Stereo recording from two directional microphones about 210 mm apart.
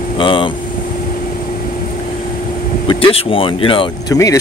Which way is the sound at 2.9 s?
25° left (ahead or behind).